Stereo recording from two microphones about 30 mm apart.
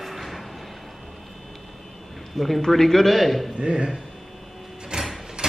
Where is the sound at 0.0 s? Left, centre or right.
Centre.